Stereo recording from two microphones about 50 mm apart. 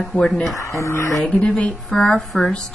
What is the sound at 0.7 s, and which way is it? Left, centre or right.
Speech, left.